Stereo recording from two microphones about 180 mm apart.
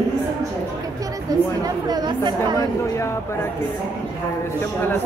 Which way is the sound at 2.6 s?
15° left (ahead or behind).